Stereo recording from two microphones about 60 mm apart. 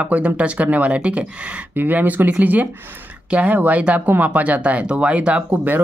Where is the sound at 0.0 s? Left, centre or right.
Right.